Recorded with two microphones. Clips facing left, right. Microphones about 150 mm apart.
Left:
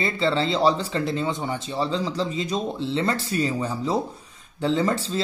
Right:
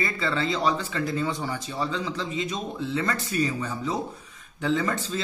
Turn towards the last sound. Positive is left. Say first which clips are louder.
# left 3 dB
turn(degrees=30)  # may be behind; listen again after turning